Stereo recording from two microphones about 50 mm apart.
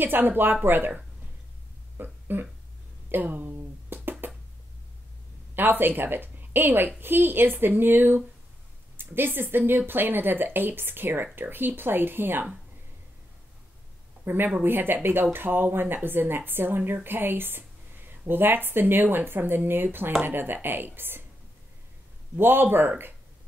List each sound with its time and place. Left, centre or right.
0.0 s speech: right
2.0 s a sound: right
5.6 s speech: right
14.2 s speech: right
22.4 s speech: right